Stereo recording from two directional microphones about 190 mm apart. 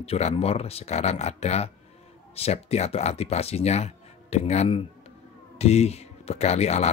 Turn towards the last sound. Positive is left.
turn(degrees=35)  # may be behind; listen again after turning